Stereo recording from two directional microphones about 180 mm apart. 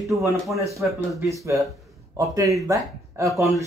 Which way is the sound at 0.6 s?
15° right (ahead or behind).